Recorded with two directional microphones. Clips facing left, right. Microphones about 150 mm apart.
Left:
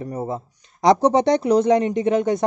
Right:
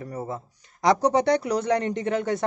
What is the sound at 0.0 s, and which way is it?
Speech, 25° left (ahead or behind).